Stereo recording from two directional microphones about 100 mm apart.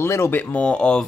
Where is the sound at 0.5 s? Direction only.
10° left (ahead or behind).